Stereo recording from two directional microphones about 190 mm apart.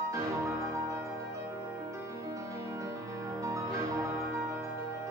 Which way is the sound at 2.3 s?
15° right (ahead or behind).